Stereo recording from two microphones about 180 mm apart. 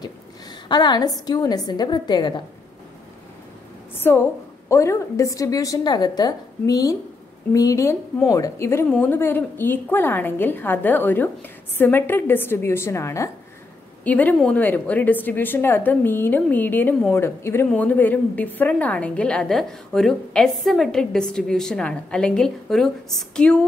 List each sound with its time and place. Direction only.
0.7 s a woman's voice: 25° left (ahead or behind)
3.9 s a woman's voice: 10° left (ahead or behind)